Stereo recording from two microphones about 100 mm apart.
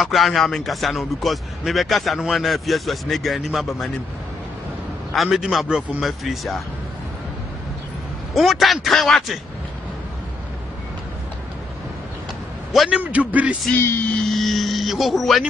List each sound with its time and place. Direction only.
0.0 s speech: centre (ahead or behind)
5.1 s speech: centre (ahead or behind)
8.4 s speech: centre (ahead or behind)
12.7 s speech: centre (ahead or behind)
13.0 s a man's voice: 15° right (ahead or behind)
13.7 s vehicle: 25° left (ahead or behind)
14.1 s speech: centre (ahead or behind)